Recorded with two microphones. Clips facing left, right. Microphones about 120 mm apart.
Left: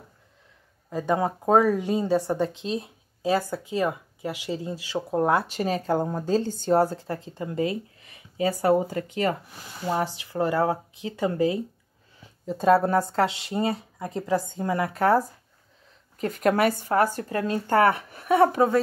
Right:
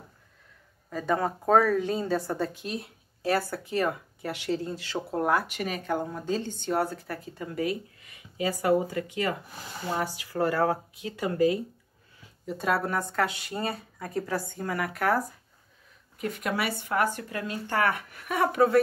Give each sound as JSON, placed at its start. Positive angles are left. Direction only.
{"t": 0.8, "sound": "a woman's voice", "side_deg": 20}
{"t": 5.2, "sound": "speech", "side_deg": 25}
{"t": 9.9, "sound": "speech", "side_deg": 25}
{"t": 16.2, "sound": "speech", "side_deg": 40}